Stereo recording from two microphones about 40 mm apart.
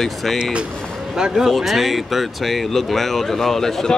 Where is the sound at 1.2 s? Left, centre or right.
Centre.